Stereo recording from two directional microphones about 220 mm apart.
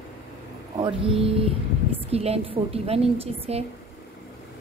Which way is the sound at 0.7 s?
25° right (ahead or behind).